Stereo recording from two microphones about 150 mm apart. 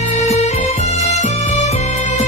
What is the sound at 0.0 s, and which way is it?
Music, 50° left (ahead or behind).